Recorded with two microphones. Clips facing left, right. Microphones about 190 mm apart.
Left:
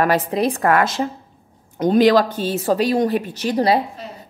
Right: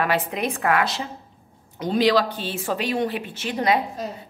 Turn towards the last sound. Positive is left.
turn(degrees=35)  # may be behind; listen again after turning